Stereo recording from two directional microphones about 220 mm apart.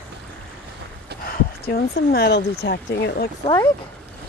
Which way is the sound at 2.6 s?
50° left (ahead or behind).